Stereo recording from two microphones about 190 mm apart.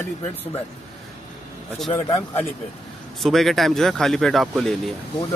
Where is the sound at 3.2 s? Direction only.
Centre (ahead or behind).